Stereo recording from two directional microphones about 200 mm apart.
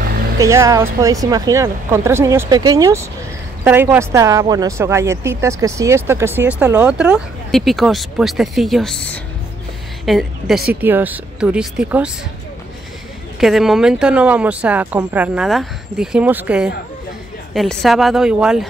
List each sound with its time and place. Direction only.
0.4 s a woman's voice: 15° right (ahead or behind)
13.4 s speech: centre (ahead or behind)